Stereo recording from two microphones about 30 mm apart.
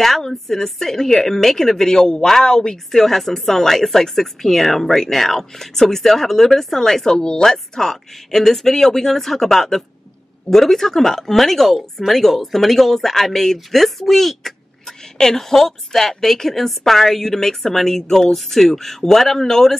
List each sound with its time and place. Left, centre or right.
0.5 s a woman's voice: centre
2.9 s a woman's voice: centre
7.4 s a woman's voice: centre